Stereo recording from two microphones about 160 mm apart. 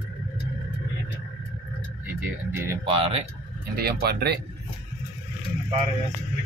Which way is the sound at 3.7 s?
80° right.